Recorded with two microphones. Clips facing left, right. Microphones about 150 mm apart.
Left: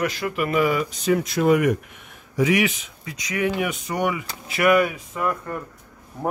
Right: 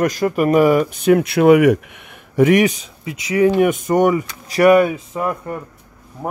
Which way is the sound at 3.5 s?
50° right (ahead or behind).